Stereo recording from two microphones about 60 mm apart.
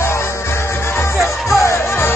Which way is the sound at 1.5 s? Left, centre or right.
Left.